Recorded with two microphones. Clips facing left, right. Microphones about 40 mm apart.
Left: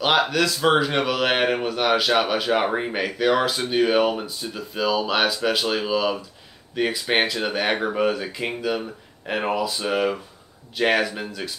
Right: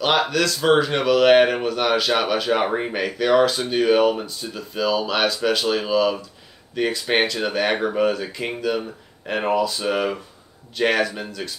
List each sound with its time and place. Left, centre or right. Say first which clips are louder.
0.0 s speech: even; centre